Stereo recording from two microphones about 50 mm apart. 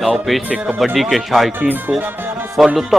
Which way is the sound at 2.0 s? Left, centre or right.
Right.